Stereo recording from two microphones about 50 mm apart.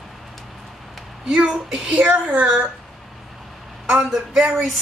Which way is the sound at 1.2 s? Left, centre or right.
Centre.